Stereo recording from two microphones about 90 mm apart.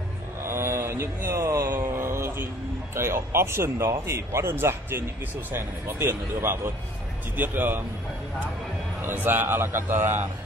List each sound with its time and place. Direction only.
0.5 s a sound: 30° right (ahead or behind)
2.9 s speech: 30° right (ahead or behind)
9.0 s speech: 25° right (ahead or behind)